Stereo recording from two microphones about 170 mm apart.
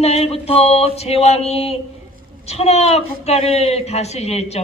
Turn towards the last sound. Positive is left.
turn(degrees=40)  # may be behind; listen again after turning